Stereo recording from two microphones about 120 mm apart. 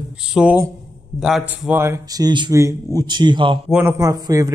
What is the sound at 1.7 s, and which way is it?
Speech, 20° right (ahead or behind).